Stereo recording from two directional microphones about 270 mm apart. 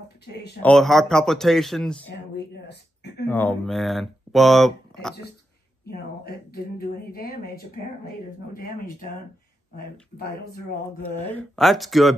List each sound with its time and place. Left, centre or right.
0.6 s speech: centre
2.1 s a sound: left
3.3 s speech: centre
5.9 s speech: left
11.1 s speech: centre